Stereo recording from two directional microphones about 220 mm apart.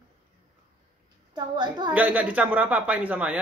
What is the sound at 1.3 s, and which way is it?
Speech, 20° right (ahead or behind).